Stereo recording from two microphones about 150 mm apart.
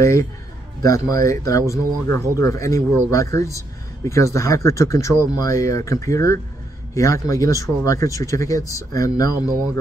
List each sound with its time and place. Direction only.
0.0 s speech: 20° left (ahead or behind)